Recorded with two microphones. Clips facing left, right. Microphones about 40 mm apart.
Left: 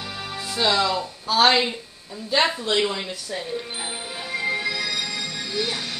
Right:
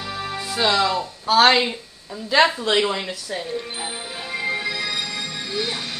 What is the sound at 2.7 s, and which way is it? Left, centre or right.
Speech, right.